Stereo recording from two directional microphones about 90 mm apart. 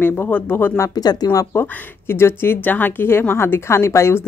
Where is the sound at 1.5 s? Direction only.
25° left (ahead or behind).